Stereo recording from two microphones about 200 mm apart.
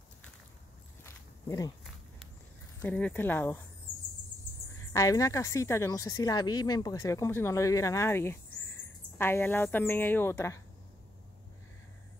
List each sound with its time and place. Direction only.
1.0 s walk: 15° left (ahead or behind)
2.8 s speech: 5° left (ahead or behind)
4.9 s speech: 15° left (ahead or behind)